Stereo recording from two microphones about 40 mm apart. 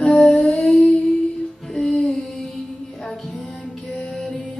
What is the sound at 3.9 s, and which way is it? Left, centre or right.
Music, centre.